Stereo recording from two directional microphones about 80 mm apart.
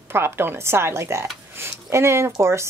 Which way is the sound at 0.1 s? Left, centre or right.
Right.